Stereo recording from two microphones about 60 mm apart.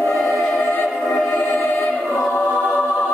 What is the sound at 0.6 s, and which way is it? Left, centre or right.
Music, left.